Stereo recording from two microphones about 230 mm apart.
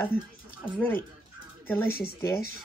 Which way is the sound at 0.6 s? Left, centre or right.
Centre.